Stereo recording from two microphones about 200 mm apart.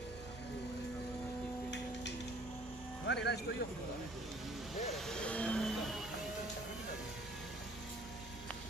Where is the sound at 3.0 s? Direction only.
60° left (ahead or behind).